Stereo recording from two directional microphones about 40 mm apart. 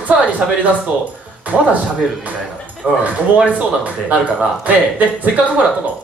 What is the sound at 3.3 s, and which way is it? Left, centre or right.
Speech, right.